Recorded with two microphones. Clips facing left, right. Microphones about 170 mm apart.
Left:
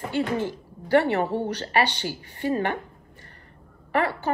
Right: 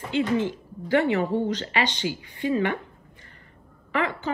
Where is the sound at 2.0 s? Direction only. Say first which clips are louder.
Right 1 dB; 45° left (ahead or behind).